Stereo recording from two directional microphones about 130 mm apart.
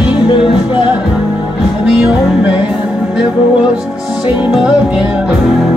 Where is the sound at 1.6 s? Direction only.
5° right (ahead or behind).